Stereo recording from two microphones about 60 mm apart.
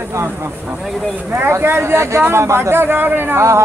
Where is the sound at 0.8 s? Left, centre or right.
Centre.